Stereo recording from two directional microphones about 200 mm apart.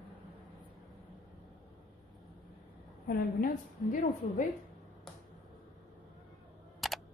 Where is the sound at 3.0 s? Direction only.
45° left (ahead or behind).